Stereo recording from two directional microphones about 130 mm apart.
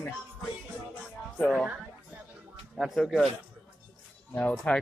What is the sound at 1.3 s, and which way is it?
Speech, 10° left (ahead or behind).